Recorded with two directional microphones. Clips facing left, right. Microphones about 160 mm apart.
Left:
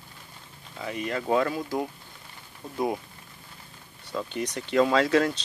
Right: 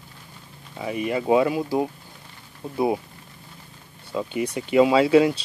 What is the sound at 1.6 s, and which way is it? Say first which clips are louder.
Speech: right 6 dB; 35° right (ahead or behind).